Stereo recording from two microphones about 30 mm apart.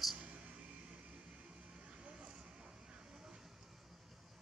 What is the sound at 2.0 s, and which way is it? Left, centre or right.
Vehicle, right.